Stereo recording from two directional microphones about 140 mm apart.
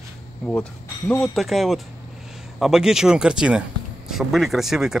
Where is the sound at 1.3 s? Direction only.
Centre (ahead or behind).